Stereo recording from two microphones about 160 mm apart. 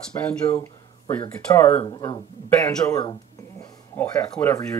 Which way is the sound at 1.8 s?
30° left (ahead or behind).